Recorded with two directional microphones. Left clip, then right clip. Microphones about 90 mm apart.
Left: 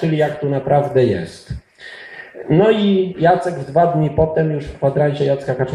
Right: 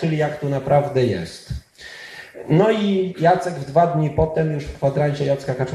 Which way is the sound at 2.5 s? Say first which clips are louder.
Left 4 dB; 30° left (ahead or behind).